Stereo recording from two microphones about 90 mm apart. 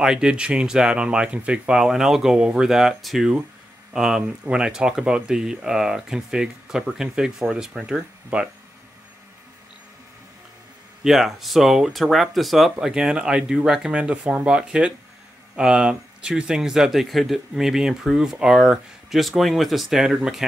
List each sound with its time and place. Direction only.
0.0 s speech: 5° right (ahead or behind)
11.1 s speech: centre (ahead or behind)